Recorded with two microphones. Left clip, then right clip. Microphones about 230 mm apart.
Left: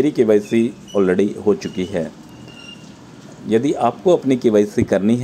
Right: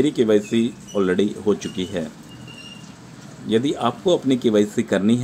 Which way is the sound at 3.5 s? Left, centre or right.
Centre.